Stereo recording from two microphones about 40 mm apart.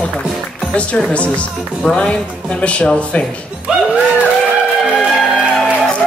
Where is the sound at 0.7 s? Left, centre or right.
Left.